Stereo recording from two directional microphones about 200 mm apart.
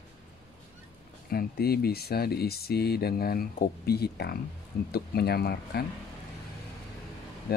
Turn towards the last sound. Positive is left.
turn(degrees=50)  # may be behind; listen again after turning